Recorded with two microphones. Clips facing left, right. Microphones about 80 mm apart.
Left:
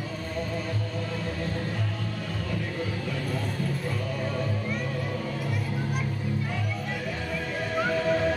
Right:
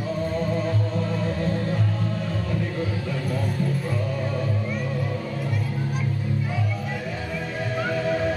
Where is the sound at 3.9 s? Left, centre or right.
Centre.